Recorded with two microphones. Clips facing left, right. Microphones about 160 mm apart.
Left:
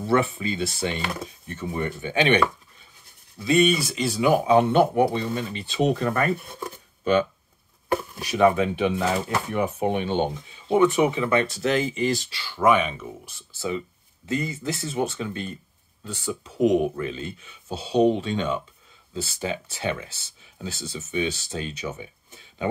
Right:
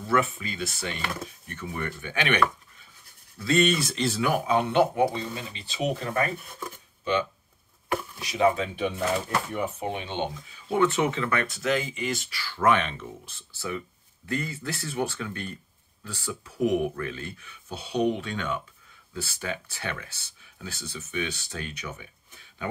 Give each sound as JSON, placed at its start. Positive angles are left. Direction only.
{"t": 0.0, "sound": "speech", "side_deg": 30}
{"t": 5.1, "sound": "speech", "side_deg": 55}
{"t": 8.2, "sound": "speech", "side_deg": 60}
{"t": 9.8, "sound": "speech", "side_deg": 50}
{"t": 10.7, "sound": "speech", "side_deg": 15}
{"t": 11.6, "sound": "speech", "side_deg": 40}
{"t": 12.4, "sound": "speech", "side_deg": 15}